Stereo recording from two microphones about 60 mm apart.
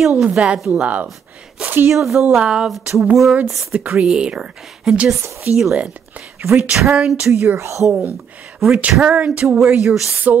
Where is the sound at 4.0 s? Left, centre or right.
Centre.